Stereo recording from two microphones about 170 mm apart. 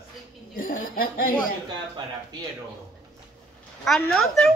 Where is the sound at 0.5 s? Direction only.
55° left (ahead or behind).